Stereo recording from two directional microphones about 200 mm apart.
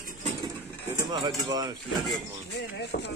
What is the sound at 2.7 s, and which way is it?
Speech, 60° left (ahead or behind).